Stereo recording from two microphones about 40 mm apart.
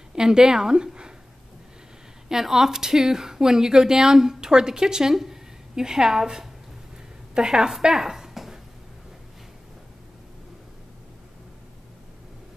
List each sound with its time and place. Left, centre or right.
0.1 s a woman's voice: centre
2.2 s a woman's voice: centre
7.8 s a sound: centre